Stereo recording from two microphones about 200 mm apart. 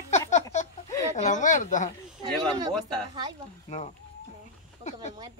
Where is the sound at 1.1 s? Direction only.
40° left (ahead or behind).